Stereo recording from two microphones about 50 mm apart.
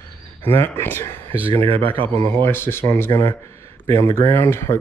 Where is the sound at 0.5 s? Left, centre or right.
Left.